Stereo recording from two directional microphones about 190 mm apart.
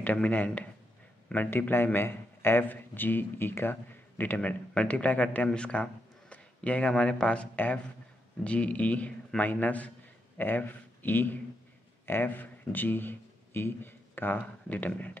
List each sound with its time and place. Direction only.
0.0 s a man's voice: 10° left (ahead or behind)